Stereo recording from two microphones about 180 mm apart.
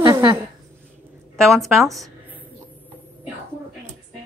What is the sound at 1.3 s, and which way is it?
A woman's voice, centre (ahead or behind).